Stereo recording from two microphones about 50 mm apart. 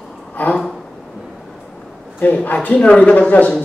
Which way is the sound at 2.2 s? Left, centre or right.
Left.